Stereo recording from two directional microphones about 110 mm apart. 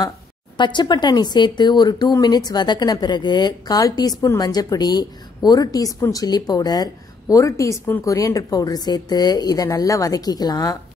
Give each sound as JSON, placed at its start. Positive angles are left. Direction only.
{"t": 0.6, "sound": "speech", "side_deg": 45}